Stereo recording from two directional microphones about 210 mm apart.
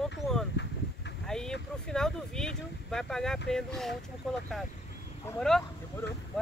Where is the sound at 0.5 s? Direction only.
55° left (ahead or behind).